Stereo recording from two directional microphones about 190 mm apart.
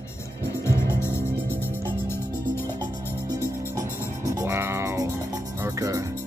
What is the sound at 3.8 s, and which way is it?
Music, 15° left (ahead or behind).